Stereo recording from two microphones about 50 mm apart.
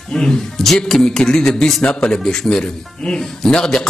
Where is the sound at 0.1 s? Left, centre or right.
Centre.